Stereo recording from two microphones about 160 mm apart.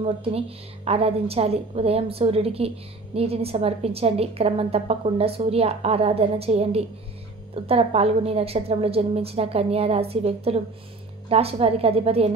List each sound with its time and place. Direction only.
0.0 s a woman's voice: 35° right (ahead or behind)